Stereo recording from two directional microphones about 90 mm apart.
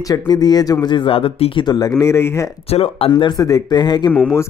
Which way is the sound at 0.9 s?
75° left (ahead or behind).